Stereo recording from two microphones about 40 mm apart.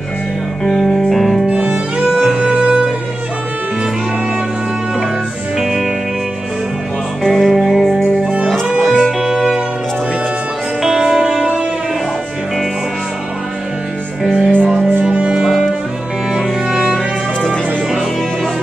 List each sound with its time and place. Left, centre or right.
0.7 s music: centre
1.5 s music: right
2.0 s music: centre
5.6 s music: centre
7.2 s music: centre
8.2 s music: right
8.8 s music: centre
10.8 s music: centre
14.2 s music: centre
15.0 s music: right